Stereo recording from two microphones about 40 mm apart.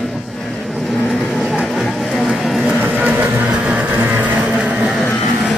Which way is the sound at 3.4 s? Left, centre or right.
Right.